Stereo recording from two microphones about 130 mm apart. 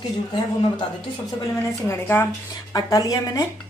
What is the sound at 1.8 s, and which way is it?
Speech, 20° left (ahead or behind).